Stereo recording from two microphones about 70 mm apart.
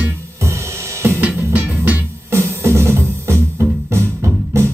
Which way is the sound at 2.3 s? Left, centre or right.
Right.